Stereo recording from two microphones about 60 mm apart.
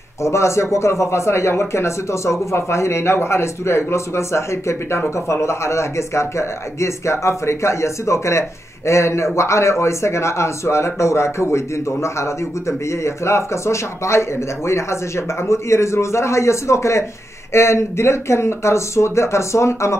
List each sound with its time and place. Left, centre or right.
0.2 s speech: left